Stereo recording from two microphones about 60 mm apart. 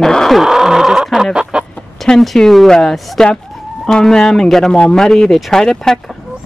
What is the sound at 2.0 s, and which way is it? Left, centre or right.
Speech, centre.